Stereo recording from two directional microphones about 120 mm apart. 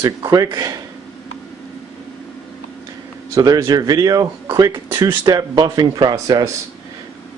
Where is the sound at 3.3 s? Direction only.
30° right (ahead or behind).